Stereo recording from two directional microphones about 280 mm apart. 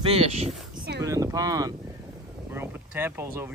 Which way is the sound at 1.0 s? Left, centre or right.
Centre.